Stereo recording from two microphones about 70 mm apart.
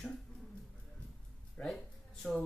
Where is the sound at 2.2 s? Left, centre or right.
Centre.